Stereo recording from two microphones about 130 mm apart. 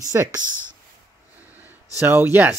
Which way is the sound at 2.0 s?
15° right (ahead or behind).